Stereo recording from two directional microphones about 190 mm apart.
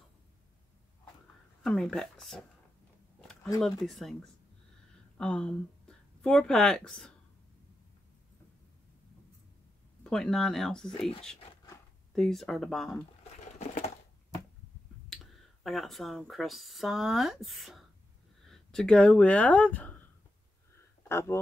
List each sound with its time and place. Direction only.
1.6 s speech: 5° left (ahead or behind)
3.6 s speech: centre (ahead or behind)
10.0 s speech: centre (ahead or behind)
13.6 s a sound: 40° left (ahead or behind)
15.6 s speech: centre (ahead or behind)
21.1 s speech: 15° left (ahead or behind)